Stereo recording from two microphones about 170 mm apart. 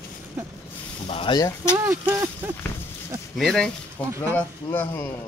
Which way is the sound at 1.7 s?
20° right (ahead or behind).